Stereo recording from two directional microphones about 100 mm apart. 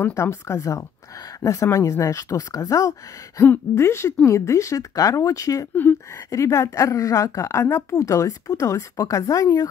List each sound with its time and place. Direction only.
0.0 s a woman's voice: 25° left (ahead or behind)